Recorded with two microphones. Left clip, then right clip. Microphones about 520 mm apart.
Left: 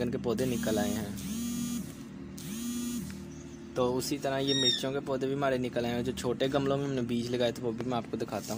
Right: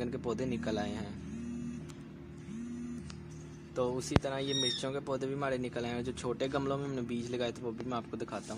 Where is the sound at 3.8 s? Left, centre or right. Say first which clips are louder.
Left 2 dB; right.